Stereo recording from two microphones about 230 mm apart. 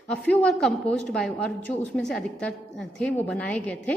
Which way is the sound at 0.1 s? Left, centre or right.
Centre.